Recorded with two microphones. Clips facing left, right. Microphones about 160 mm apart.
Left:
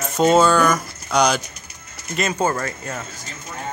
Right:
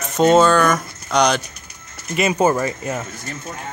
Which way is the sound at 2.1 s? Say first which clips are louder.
Right 5 dB; 15° right (ahead or behind).